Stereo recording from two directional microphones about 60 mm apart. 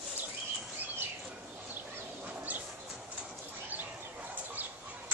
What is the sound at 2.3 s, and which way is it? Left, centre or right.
Bird, right.